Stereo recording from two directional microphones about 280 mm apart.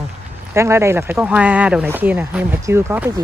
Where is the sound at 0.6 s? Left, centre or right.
Centre.